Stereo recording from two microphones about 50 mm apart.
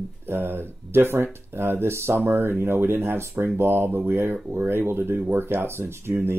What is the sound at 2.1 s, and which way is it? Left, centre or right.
Speech, right.